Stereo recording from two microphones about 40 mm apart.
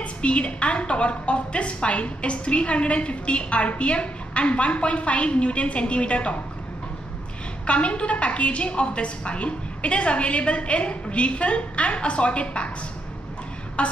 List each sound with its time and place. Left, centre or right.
0.0 s a woman's voice: left
7.6 s a woman's voice: left
13.8 s a sound: left